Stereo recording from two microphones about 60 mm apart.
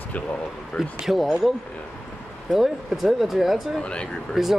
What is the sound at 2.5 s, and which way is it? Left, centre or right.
Speech, centre.